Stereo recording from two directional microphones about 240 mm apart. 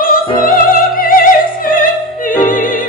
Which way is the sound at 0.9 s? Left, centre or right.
Left.